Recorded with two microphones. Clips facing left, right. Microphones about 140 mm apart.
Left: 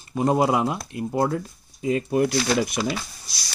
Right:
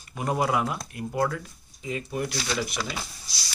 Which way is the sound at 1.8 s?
50° left (ahead or behind).